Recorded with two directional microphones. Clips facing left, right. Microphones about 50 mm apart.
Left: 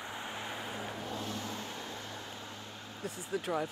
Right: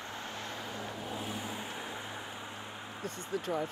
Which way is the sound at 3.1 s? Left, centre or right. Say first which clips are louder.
Even; centre.